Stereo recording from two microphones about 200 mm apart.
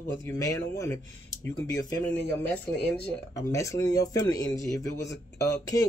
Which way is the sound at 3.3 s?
15° left (ahead or behind).